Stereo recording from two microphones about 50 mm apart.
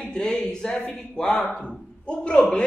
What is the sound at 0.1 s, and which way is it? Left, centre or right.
A man's voice, centre.